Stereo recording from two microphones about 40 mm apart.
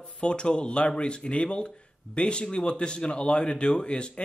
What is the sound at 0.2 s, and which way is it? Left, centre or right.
Speech, left.